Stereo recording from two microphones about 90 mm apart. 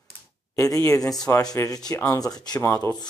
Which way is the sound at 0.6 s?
40° left (ahead or behind).